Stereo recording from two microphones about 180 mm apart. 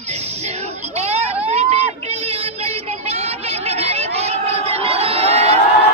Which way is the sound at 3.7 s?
35° right (ahead or behind).